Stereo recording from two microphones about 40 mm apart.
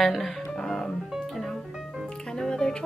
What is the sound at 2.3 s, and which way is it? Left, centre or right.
Music, centre.